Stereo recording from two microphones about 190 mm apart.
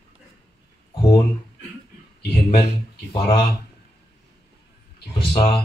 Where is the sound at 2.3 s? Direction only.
25° left (ahead or behind).